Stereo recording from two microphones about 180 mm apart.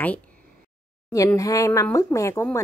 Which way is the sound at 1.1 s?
15° left (ahead or behind).